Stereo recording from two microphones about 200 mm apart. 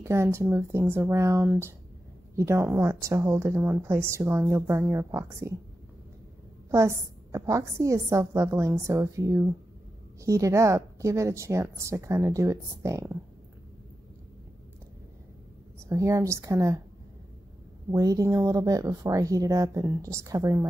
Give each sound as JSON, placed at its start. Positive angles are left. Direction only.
{"t": 0.0, "sound": "a woman's voice", "side_deg": -15}
{"t": 6.7, "sound": "a woman's voice", "side_deg": -15}
{"t": 15.9, "sound": "a woman's voice", "side_deg": -15}
{"t": 17.9, "sound": "a woman's voice", "side_deg": -15}